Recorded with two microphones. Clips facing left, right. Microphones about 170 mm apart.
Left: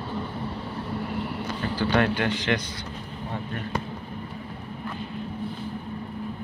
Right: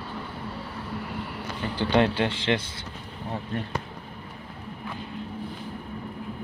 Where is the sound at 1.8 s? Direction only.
25° right (ahead or behind).